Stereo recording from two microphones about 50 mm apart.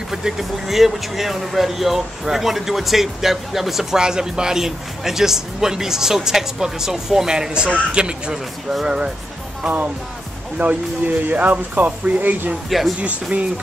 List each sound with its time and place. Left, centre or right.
0.1 s speech: centre
10.6 s speech: right
11.3 s speech: right
12.6 s speech: centre
13.0 s speech: right